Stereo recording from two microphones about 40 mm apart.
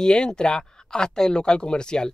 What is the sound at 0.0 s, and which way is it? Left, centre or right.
Speech, centre.